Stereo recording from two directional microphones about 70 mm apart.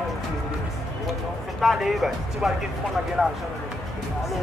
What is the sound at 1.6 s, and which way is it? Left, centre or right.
Speech, centre.